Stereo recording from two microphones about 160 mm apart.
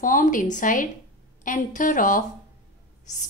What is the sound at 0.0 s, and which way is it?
A woman's voice, 55° left (ahead or behind).